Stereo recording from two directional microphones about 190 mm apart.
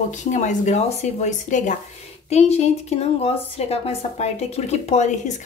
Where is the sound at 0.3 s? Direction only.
40° left (ahead or behind).